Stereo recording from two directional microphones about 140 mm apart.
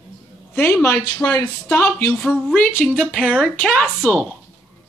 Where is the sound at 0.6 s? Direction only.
15° left (ahead or behind).